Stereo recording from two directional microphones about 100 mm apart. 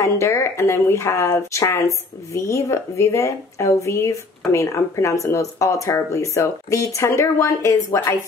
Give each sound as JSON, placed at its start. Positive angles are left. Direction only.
{"t": 0.0, "sound": "a woman's voice", "side_deg": 30}